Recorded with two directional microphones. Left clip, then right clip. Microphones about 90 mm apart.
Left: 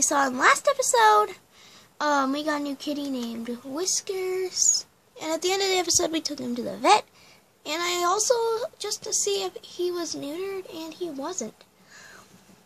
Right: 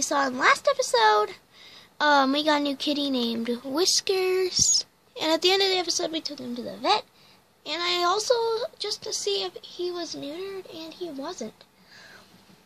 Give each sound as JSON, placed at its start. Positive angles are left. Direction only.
{"t": 0.0, "sound": "a woman's voice", "side_deg": 20}
{"t": 1.6, "sound": "a sound", "side_deg": -5}
{"t": 2.0, "sound": "speech", "side_deg": -25}
{"t": 5.9, "sound": "speech", "side_deg": 35}
{"t": 6.2, "sound": "speech", "side_deg": 70}
{"t": 7.8, "sound": "a woman's voice", "side_deg": 5}
{"t": 9.6, "sound": "speech", "side_deg": 35}